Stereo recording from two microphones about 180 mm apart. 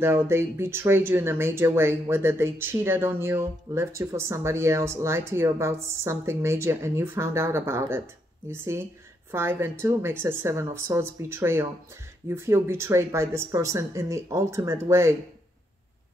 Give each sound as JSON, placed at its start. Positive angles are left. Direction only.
{"t": 0.0, "sound": "speech", "side_deg": -15}